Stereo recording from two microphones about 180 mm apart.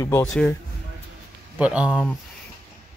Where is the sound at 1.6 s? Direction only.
5° right (ahead or behind).